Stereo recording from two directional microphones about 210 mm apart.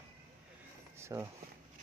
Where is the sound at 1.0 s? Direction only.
10° right (ahead or behind).